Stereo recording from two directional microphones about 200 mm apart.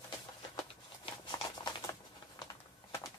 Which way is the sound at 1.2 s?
20° left (ahead or behind).